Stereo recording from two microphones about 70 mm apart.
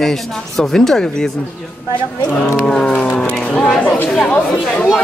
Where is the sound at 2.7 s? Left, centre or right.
Centre.